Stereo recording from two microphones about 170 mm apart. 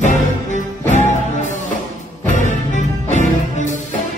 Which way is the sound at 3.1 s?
45° left (ahead or behind).